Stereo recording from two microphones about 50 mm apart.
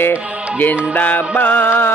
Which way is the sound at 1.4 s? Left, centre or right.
Left.